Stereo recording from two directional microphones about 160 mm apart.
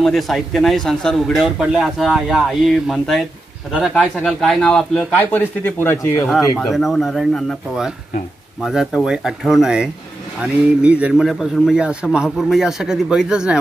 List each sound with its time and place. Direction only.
0.0 s speech: centre (ahead or behind)
6.2 s speech: centre (ahead or behind)